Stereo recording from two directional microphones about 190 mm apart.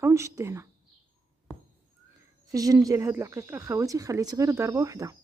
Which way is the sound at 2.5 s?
20° right (ahead or behind).